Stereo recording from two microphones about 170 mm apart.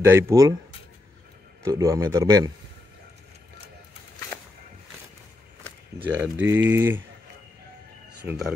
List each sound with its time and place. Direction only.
0.0 s speech: 15° right (ahead or behind)
1.6 s a man's voice: 20° right (ahead or behind)
6.0 s speech: 10° right (ahead or behind)
8.2 s speech: 10° right (ahead or behind)